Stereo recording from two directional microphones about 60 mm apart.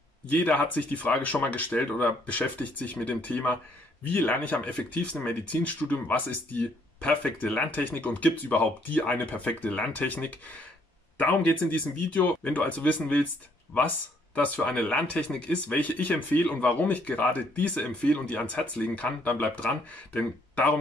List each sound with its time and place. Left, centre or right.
0.6 s speech: left
6.6 s speech: centre
7.5 s speech: left